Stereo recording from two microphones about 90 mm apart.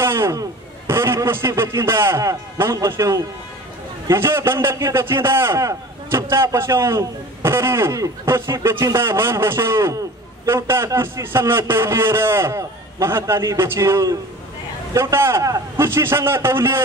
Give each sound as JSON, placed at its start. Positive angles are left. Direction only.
{"t": 0.0, "sound": "a man's voice", "side_deg": -30}